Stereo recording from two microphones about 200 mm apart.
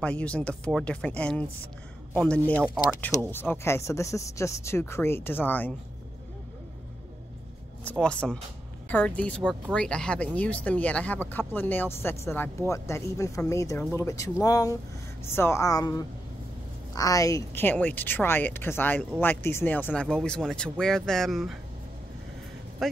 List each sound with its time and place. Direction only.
0.0 s speech: 5° left (ahead or behind)
8.0 s speech: 5° left (ahead or behind)
22.8 s speech: centre (ahead or behind)